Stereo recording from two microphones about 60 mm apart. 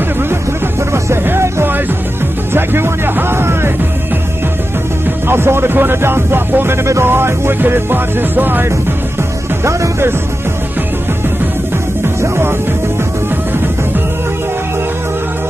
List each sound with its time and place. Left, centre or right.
1.2 s music: right
5.3 s speech: right
9.7 s music: right
12.2 s music: right